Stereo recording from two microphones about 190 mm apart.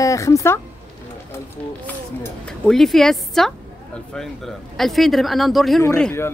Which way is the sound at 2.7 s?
Centre (ahead or behind).